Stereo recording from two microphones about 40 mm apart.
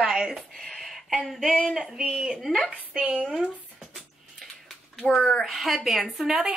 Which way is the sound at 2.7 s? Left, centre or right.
Right.